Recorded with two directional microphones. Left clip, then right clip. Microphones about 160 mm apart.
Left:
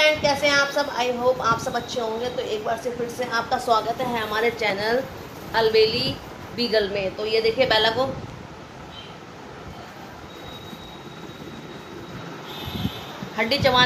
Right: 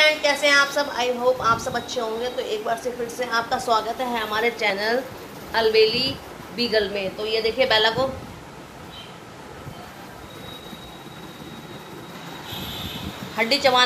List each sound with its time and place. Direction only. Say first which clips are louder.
0.0 s a woman's voice: right 1 dB; 10° right (ahead or behind)
13.4 s a woman's voice: right 1 dB; 20° right (ahead or behind)